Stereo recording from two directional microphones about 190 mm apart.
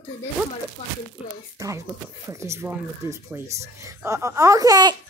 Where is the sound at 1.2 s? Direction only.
5° right (ahead or behind).